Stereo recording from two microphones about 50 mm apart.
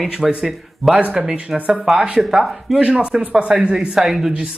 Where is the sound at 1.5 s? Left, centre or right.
Centre.